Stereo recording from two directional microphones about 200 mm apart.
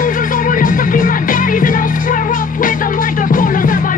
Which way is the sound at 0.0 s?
40° left (ahead or behind).